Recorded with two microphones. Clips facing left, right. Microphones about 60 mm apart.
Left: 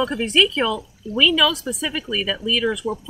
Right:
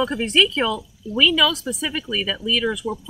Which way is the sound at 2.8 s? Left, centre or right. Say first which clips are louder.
Left 1 dB; left.